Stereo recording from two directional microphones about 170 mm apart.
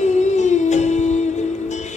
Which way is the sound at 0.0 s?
45° left (ahead or behind).